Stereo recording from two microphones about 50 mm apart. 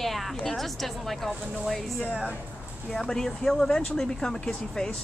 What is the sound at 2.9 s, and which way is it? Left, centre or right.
Speech, centre.